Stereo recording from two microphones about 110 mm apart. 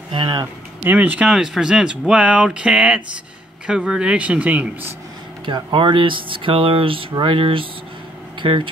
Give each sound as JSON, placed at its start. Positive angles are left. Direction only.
{"t": 0.1, "sound": "speech", "side_deg": -45}
{"t": 0.8, "sound": "speech", "side_deg": -15}
{"t": 5.4, "sound": "speech", "side_deg": -45}